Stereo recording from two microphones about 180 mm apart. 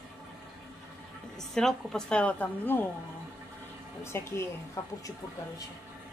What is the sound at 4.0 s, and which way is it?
Speech, 15° left (ahead or behind).